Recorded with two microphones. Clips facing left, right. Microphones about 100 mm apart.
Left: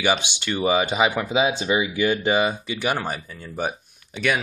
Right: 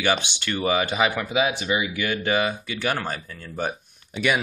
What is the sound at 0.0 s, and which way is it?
Speech, 15° left (ahead or behind).